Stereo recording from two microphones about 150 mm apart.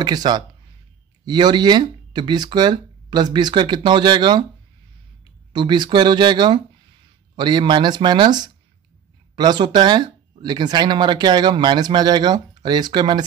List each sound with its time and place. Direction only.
0.0 s speech: 25° right (ahead or behind)
5.5 s speech: 30° right (ahead or behind)